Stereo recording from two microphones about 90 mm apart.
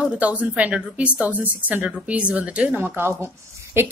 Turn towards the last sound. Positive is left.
turn(degrees=-25)  # may be behind; listen again after turning